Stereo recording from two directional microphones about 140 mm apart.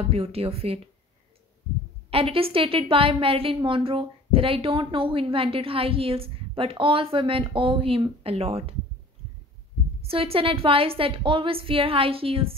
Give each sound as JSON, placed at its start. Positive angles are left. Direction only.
{"t": 0.1, "sound": "a woman's voice", "side_deg": -45}
{"t": 2.0, "sound": "a woman's voice", "side_deg": -45}
{"t": 10.0, "sound": "a woman's voice", "side_deg": -45}